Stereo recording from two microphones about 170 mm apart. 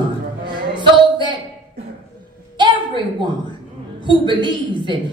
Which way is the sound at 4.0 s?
30° right (ahead or behind).